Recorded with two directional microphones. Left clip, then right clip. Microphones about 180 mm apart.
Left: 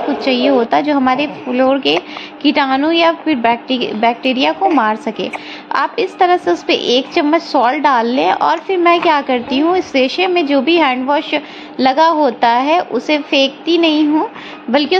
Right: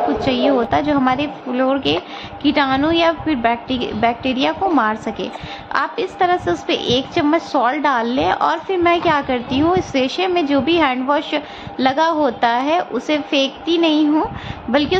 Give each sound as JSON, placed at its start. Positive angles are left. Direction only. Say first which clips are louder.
{"t": 0.2, "sound": "a woman's voice", "louder": "left 3 dB", "side_deg": 15}